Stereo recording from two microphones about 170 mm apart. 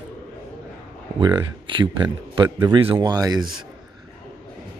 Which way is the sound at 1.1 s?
25° right (ahead or behind).